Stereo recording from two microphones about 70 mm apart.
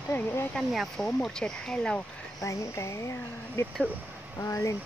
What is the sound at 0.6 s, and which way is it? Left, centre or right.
Speech, centre.